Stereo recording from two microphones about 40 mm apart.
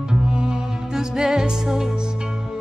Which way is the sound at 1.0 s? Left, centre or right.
Centre.